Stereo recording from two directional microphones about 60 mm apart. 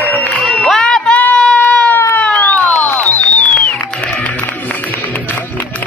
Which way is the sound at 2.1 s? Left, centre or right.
Left.